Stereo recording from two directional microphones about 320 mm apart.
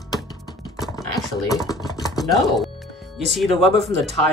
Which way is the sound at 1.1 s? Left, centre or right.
Centre.